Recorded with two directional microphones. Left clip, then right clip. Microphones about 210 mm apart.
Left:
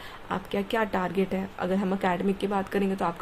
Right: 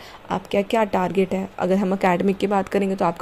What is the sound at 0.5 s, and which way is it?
A woman's voice, 25° right (ahead or behind).